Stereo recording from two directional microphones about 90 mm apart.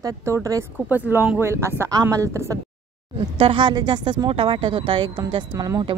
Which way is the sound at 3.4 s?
70° right (ahead or behind).